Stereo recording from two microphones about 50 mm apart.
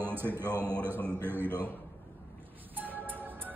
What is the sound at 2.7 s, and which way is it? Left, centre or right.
Music, right.